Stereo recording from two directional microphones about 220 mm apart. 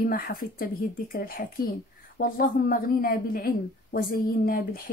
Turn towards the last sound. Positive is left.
turn(degrees=40)  # may be behind; listen again after turning